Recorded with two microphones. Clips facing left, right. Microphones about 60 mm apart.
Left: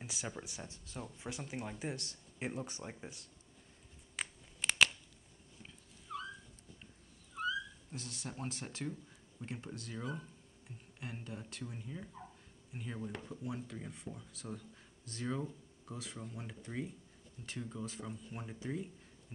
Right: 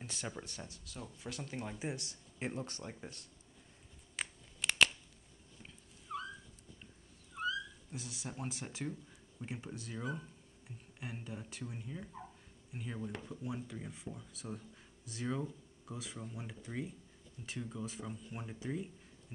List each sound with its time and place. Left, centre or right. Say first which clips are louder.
0.0 s speech: even; centre
0.7 s speech: left 2 dB; left
1.7 s speech: even; centre
2.7 s speech: even; centre
4.2 s a sound: even; centre
7.3 s speech: even; centre